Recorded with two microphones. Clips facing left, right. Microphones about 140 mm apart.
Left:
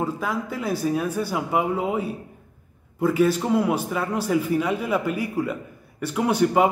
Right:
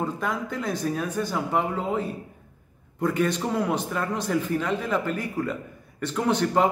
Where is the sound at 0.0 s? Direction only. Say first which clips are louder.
Left 2 dB; 5° left (ahead or behind).